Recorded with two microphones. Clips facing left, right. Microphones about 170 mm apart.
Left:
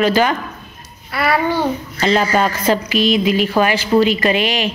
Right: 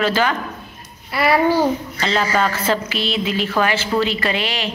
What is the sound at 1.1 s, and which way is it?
Babbling, 5° right (ahead or behind).